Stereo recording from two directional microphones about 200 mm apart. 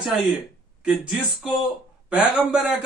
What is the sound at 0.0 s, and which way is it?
Speech, centre (ahead or behind).